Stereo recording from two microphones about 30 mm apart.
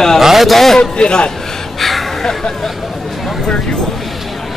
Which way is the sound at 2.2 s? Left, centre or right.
Centre.